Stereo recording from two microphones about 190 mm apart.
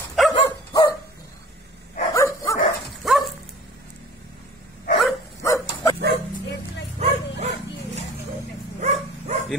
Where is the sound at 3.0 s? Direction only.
Centre (ahead or behind).